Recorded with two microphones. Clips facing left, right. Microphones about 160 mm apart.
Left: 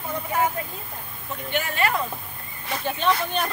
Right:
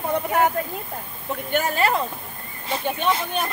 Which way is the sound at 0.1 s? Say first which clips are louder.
Right 4 dB; 65° right (ahead or behind).